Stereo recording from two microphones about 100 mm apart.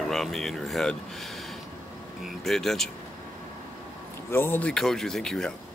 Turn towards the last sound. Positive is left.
turn(degrees=5)  # may be behind; listen again after turning